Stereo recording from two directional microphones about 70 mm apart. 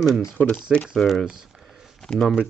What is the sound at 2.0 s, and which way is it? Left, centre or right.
Speech, centre.